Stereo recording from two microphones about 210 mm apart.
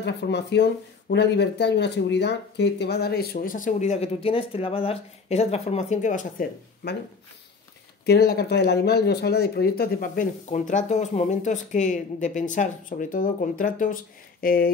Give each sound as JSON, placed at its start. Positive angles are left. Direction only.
{"t": 0.0, "sound": "speech", "side_deg": 55}
{"t": 8.0, "sound": "speech", "side_deg": 50}